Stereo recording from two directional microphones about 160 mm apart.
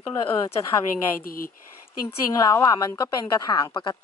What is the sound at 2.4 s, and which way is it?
Speech, 20° left (ahead or behind).